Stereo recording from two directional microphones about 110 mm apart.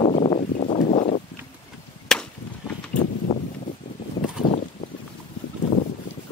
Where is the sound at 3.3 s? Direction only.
70° left (ahead or behind).